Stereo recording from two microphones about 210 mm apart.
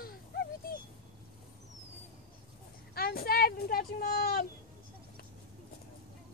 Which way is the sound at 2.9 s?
45° left (ahead or behind).